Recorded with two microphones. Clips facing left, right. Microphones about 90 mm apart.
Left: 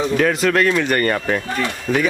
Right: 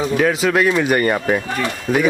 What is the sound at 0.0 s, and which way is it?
Speech, centre (ahead or behind).